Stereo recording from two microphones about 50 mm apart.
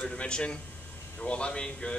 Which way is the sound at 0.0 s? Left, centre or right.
Centre.